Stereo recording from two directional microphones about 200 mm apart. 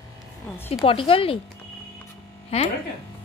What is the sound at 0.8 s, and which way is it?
Speech, 25° left (ahead or behind).